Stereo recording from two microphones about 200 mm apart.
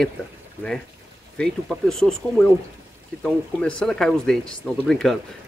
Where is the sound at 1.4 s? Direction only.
Centre (ahead or behind).